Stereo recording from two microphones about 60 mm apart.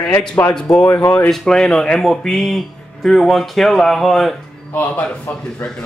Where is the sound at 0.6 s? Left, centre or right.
Centre.